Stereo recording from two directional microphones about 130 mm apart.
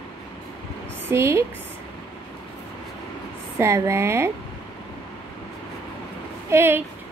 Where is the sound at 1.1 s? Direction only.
20° right (ahead or behind).